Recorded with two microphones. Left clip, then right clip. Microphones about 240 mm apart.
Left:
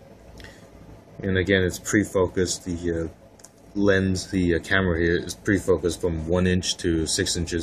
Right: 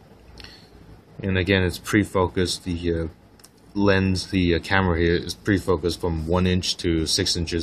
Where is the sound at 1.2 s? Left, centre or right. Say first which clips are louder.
Even; centre.